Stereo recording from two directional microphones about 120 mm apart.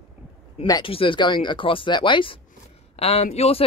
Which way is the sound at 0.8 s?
50° left (ahead or behind).